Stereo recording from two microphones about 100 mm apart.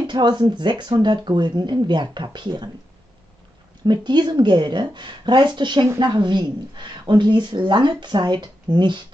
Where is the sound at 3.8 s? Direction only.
50° right (ahead or behind).